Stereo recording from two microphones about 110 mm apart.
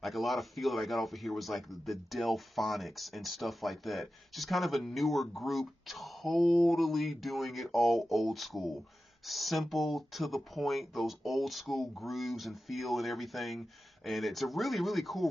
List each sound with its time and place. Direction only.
0.0 s speech: centre (ahead or behind)